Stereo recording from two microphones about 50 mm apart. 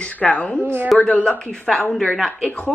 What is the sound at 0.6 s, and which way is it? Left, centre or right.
Speech, right.